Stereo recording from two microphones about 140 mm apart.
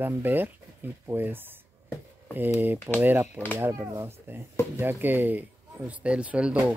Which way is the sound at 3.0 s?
15° right (ahead or behind).